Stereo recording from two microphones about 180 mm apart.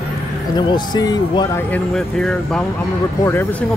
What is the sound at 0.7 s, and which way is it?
Speech, 25° left (ahead or behind).